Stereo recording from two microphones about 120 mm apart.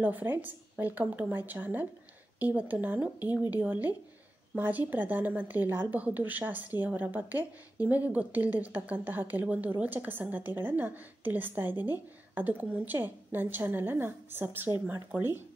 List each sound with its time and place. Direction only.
0.0 s a woman's voice: 15° right (ahead or behind)